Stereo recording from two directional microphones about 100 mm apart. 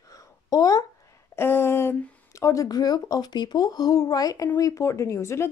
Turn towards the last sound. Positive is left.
turn(degrees=25)  # may be behind; listen again after turning